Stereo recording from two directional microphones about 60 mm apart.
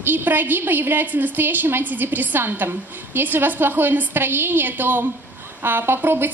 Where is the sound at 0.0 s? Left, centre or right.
Right.